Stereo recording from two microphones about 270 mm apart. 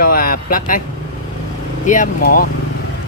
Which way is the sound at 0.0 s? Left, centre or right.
Left.